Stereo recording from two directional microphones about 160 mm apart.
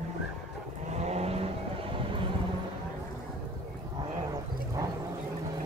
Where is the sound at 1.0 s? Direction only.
40° right (ahead or behind).